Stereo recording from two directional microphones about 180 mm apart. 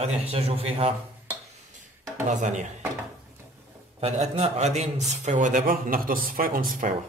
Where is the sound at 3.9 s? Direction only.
35° right (ahead or behind); by 6.6 s 55° right (ahead or behind).